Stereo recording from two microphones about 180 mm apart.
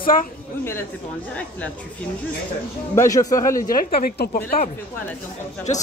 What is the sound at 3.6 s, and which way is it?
Speech, 55° left (ahead or behind).